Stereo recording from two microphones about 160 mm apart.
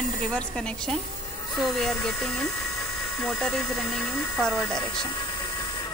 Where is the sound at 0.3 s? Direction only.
5° left (ahead or behind).